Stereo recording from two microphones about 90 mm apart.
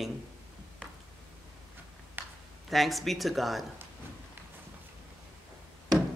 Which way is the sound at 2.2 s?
25° right (ahead or behind).